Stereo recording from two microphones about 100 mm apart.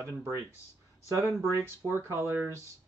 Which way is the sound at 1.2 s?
25° right (ahead or behind).